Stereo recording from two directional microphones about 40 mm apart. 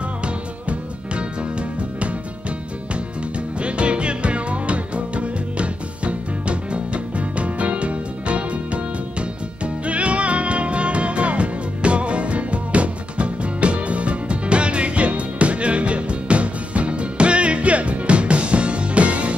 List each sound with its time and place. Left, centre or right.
3.5 s music: right
9.8 s music: right